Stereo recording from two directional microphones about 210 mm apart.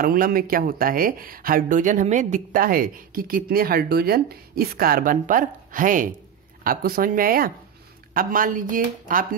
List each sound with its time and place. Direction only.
0.0 s speech: 45° right (ahead or behind)